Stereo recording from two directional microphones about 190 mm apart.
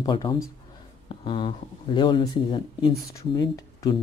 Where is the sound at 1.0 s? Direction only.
25° left (ahead or behind).